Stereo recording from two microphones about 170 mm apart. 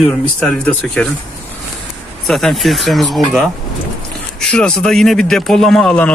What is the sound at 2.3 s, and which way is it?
Speech, centre (ahead or behind).